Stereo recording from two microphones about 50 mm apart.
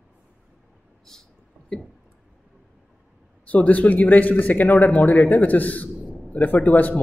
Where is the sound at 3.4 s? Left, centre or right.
Left.